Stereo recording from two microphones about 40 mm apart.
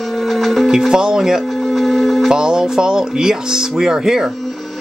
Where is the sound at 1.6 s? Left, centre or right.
Centre.